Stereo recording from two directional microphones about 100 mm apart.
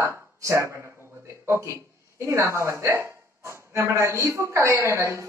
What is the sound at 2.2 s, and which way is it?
Speech, 30° right (ahead or behind).